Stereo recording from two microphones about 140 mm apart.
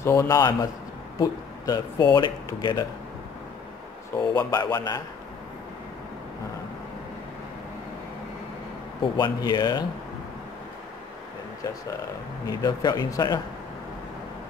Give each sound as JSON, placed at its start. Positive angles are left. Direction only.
{"t": 0.0, "sound": "speech", "side_deg": 20}
{"t": 4.2, "sound": "speech", "side_deg": 30}
{"t": 9.1, "sound": "speech", "side_deg": 30}
{"t": 12.4, "sound": "speech", "side_deg": 30}